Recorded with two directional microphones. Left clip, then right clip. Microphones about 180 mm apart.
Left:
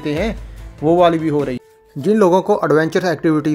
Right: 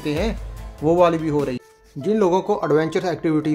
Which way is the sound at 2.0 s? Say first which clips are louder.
Left 5 dB; 30° left (ahead or behind).